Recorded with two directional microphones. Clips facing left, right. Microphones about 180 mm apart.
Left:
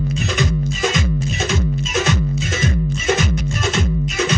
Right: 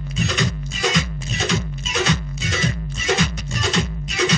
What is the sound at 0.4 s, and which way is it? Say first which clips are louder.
Music: left 4 dB; 50° left (ahead or behind).